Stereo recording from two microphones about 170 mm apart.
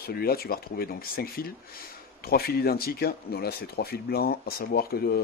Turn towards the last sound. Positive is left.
turn(degrees=65)  # may be behind; listen again after turning